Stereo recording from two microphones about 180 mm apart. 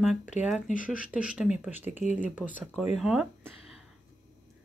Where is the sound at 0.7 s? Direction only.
40° left (ahead or behind).